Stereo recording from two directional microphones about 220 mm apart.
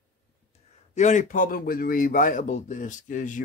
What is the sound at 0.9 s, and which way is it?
Speech, 35° left (ahead or behind).